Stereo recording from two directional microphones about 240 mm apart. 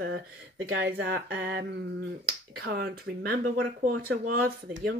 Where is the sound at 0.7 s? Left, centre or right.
Right.